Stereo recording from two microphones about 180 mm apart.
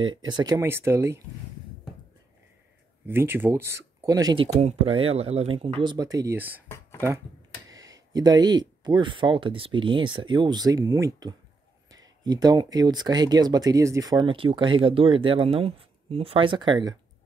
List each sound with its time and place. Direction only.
0.3 s speech: 20° right (ahead or behind)
3.1 s speech: 10° right (ahead or behind)
4.6 s speech: 35° right (ahead or behind); by 6.6 s 10° right (ahead or behind)
7.7 s speech: 20° right (ahead or behind)